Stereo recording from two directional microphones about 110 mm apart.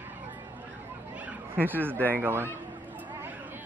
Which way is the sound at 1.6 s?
20° right (ahead or behind).